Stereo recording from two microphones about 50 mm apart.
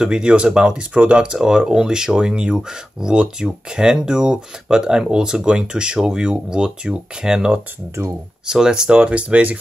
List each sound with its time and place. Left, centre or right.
0.0 s speech: centre
1.3 s speech: centre; by 9.6 s right